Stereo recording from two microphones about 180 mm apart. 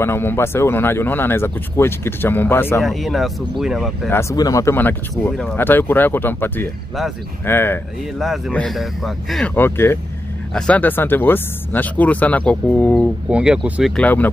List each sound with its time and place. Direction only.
0.0 s speech: 10° left (ahead or behind)
2.8 s speech: centre (ahead or behind)
4.1 s speech: 15° left (ahead or behind); by 9.5 s centre (ahead or behind)
9.6 s speech: 15° left (ahead or behind); by 13.9 s 5° right (ahead or behind)
13.9 s speech: 10° left (ahead or behind)